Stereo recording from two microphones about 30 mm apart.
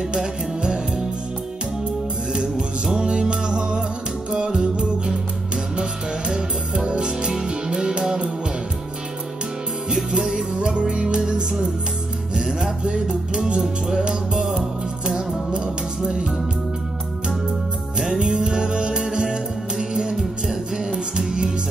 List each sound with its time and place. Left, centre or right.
0.1 s music: right
2.3 s music: centre
10.1 s music: centre
10.8 s music: right
12.4 s music: centre
16.0 s music: right
17.9 s music: centre